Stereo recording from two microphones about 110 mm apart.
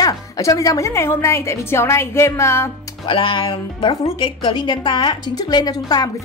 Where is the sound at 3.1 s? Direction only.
50° left (ahead or behind).